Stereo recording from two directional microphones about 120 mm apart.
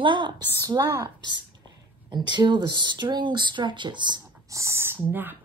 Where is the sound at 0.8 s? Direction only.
20° right (ahead or behind).